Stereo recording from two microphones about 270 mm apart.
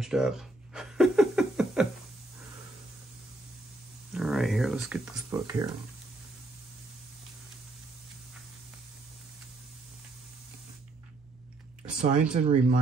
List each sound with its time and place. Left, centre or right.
0.0 s a sound: centre
4.1 s speech: centre
12.0 s speech: right